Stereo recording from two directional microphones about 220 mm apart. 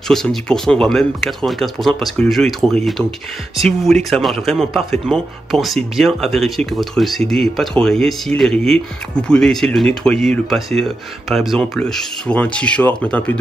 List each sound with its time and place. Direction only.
0.1 s speech: centre (ahead or behind)